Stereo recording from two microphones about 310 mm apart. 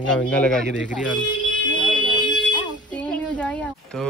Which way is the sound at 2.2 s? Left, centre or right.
Centre.